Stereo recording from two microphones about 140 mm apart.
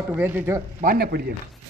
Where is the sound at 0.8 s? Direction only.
75° right (ahead or behind).